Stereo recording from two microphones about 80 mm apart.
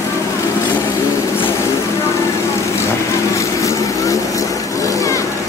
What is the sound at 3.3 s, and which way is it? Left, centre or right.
Vehicle, left.